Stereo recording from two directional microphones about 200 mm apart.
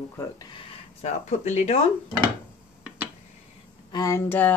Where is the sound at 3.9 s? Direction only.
15° left (ahead or behind).